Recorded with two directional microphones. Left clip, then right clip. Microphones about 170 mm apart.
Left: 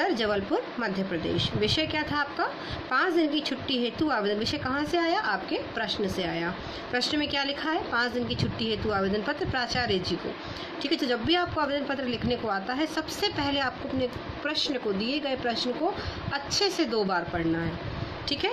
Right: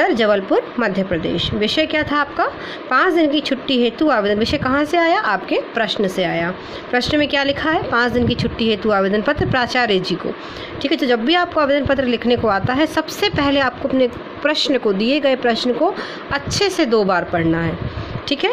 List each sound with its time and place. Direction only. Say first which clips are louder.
0.0 s a woman's voice: right 11 dB; 45° right (ahead or behind)